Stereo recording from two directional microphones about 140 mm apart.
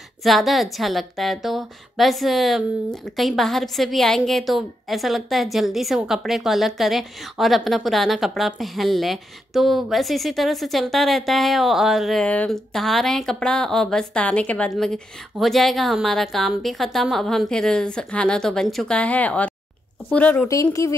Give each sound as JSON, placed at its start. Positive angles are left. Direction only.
{"t": 0.2, "sound": "a woman's voice", "side_deg": 0}
{"t": 20.8, "sound": "speech", "side_deg": 25}